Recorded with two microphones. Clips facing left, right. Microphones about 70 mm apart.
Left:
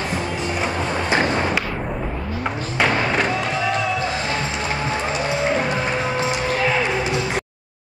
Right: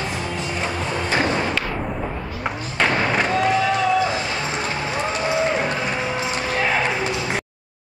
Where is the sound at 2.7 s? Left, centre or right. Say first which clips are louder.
Even; centre.